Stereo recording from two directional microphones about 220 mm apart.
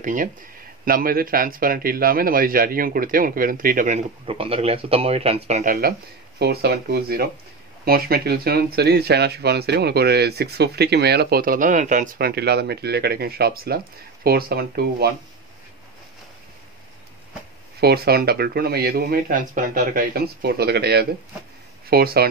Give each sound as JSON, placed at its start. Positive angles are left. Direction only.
{"t": 0.0, "sound": "a man's voice", "side_deg": -35}
{"t": 17.7, "sound": "speech", "side_deg": -45}